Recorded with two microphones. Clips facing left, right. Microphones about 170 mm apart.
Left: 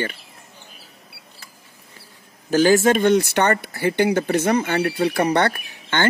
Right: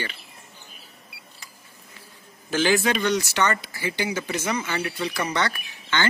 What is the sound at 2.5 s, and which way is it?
Speech, 40° left (ahead or behind).